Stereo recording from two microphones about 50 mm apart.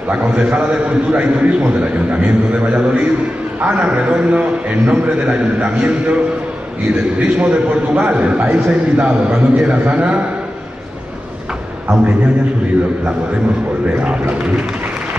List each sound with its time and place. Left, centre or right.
0.1 s a man's voice: right